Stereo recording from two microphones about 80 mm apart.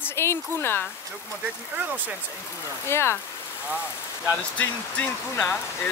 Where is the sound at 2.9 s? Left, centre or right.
Left.